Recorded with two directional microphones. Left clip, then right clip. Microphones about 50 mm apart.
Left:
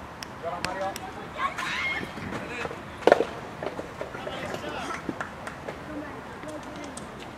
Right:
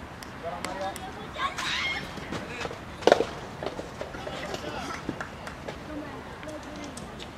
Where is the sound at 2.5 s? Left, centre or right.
Centre.